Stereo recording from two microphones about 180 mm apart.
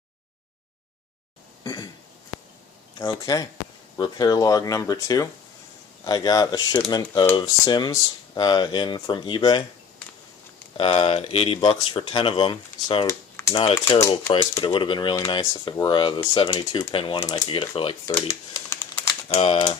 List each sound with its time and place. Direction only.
1.6 s cough: 20° left (ahead or behind)
3.0 s speech: 20° left (ahead or behind)
10.8 s speech: 30° left (ahead or behind)
13.8 s speech: 15° left (ahead or behind)
14.6 s speech: 30° left (ahead or behind)
18.7 s typing: 15° left (ahead or behind)
19.4 s speech: 30° left (ahead or behind)